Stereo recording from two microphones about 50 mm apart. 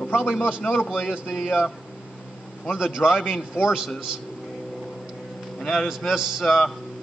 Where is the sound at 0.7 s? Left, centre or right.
Centre.